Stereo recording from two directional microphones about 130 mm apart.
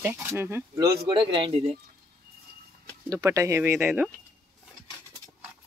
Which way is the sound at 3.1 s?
25° right (ahead or behind).